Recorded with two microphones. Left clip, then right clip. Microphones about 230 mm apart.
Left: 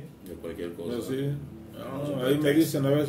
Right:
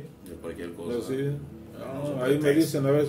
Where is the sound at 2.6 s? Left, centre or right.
Centre.